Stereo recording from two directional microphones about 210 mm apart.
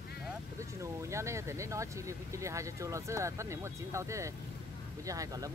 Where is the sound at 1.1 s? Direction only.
15° right (ahead or behind).